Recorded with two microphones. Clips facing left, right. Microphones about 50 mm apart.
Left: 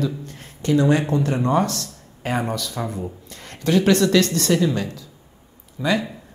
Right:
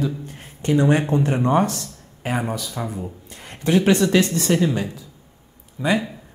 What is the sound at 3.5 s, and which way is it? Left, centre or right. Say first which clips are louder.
Speech: even; centre.